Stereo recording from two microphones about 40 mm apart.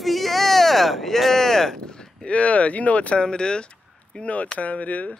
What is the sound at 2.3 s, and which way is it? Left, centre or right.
Speech, left.